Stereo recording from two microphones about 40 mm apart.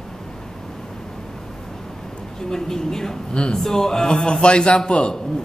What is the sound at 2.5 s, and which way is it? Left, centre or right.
Speech, centre.